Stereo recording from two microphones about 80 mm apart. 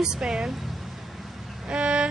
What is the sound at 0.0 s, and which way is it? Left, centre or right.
Speech, centre.